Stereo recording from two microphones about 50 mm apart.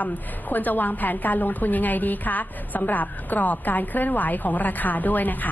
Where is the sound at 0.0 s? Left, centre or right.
Left.